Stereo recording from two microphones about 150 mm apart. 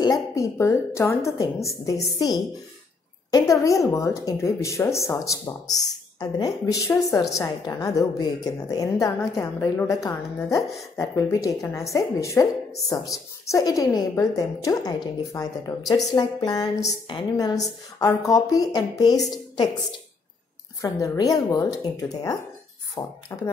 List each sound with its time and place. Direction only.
0.0 s a woman's voice: 20° left (ahead or behind)
20.8 s a woman's voice: 25° left (ahead or behind)